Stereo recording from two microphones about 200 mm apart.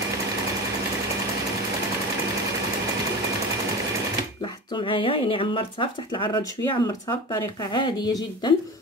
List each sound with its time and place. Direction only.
4.7 s speech: 25° left (ahead or behind)